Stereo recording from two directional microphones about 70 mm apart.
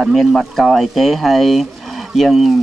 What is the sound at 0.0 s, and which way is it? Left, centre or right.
Speech, centre.